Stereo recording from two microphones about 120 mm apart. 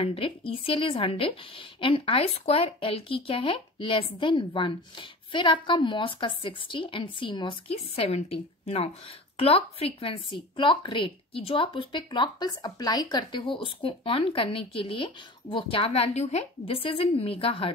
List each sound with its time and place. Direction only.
0.0 s speech: 50° left (ahead or behind)
7.7 s a woman's voice: 60° left (ahead or behind)